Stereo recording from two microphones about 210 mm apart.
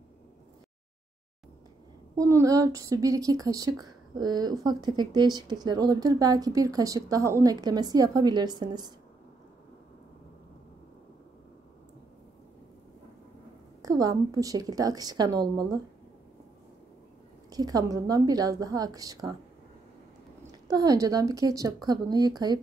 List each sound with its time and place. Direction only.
2.1 s a woman's voice: 15° right (ahead or behind)
13.8 s a woman's voice: 15° right (ahead or behind)
17.5 s a woman's voice: 20° right (ahead or behind)
20.6 s a woman's voice: 15° right (ahead or behind)